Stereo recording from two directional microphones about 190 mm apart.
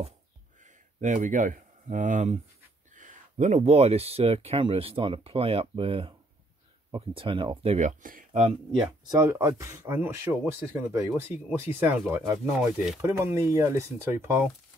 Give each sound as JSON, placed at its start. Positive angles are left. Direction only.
{"t": 1.0, "sound": "speech", "side_deg": -40}
{"t": 8.3, "sound": "speech", "side_deg": -30}
{"t": 9.1, "sound": "speech", "side_deg": -15}
{"t": 12.5, "sound": "speech", "side_deg": 0}
{"t": 13.0, "sound": "speech", "side_deg": -15}